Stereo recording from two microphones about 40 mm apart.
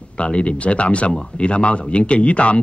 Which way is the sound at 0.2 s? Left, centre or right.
Left.